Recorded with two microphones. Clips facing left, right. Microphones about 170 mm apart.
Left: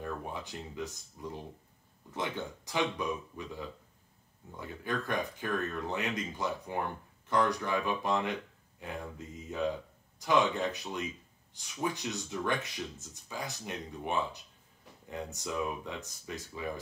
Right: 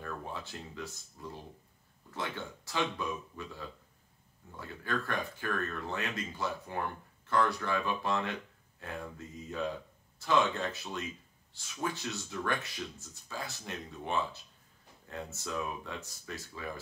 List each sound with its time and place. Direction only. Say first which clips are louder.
0.0 s speech: left 2 dB; 15° left (ahead or behind)
10.1 s speech: left 1 dB; 15° left (ahead or behind)